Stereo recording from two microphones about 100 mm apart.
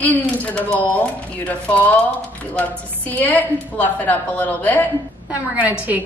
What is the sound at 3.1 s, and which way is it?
A woman's voice, 15° left (ahead or behind).